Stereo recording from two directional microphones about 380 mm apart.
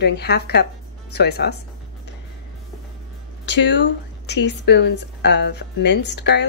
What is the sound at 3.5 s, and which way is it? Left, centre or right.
A woman's voice, left.